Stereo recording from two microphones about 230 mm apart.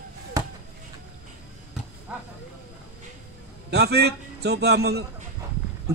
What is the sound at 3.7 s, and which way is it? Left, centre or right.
A man's voice, right.